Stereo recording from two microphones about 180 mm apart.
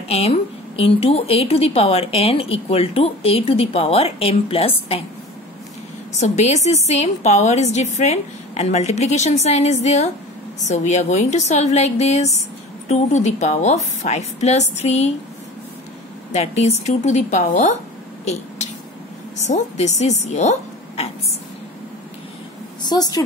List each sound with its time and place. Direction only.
0.1 s a woman's voice: 35° left (ahead or behind)
6.1 s a woman's voice: 40° left (ahead or behind)
16.3 s a woman's voice: 40° left (ahead or behind)
19.4 s a woman's voice: 40° left (ahead or behind)
22.8 s a woman's voice: 20° left (ahead or behind)